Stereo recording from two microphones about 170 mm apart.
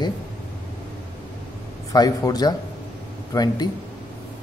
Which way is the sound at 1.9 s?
20° left (ahead or behind).